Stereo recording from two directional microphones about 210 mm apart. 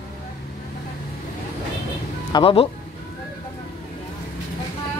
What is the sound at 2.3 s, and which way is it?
Speech, 25° left (ahead or behind).